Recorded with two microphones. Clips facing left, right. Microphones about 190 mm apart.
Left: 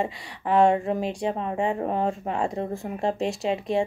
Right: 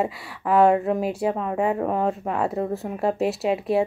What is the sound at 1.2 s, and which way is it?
Speech, 30° left (ahead or behind).